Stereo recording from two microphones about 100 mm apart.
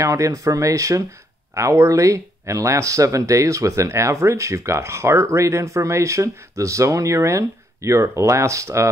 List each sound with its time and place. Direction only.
0.0 s speech: 30° right (ahead or behind)